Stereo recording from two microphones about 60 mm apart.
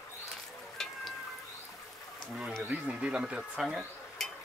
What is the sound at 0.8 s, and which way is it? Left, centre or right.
Cat, centre.